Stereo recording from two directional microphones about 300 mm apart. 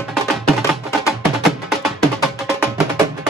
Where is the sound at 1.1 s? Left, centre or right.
Centre.